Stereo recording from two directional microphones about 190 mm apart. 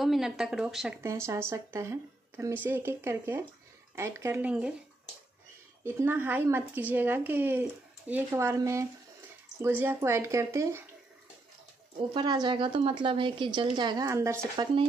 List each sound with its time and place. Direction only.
0.0 s speech: centre (ahead or behind)
1.0 s a woman's voice: 15° right (ahead or behind)
5.9 s a woman's voice: 10° right (ahead or behind)
12.1 s a woman's voice: 20° right (ahead or behind)